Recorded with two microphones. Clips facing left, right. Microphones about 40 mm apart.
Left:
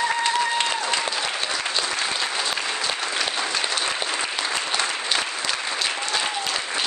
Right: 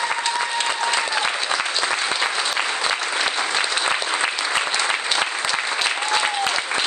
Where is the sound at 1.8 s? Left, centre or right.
Right.